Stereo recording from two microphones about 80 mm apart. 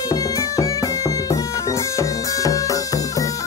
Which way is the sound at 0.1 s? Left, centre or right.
Left.